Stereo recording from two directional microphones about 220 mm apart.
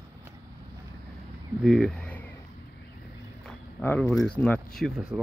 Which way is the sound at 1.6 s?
Centre (ahead or behind).